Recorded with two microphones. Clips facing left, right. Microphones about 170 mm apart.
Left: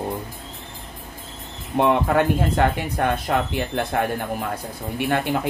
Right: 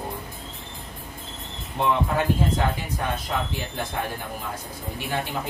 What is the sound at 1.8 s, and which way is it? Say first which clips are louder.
Speech: left 5 dB; 65° left (ahead or behind).